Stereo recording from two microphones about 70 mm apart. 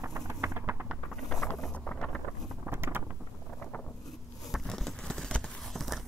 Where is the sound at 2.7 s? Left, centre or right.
Right.